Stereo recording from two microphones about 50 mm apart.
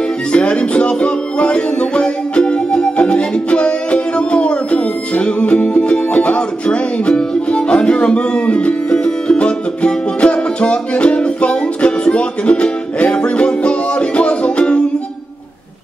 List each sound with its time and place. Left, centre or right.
0.3 s music: left